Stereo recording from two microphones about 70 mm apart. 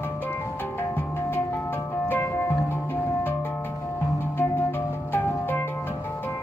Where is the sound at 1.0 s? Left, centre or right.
Left.